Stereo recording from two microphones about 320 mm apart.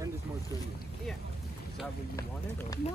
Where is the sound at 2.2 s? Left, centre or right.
Centre.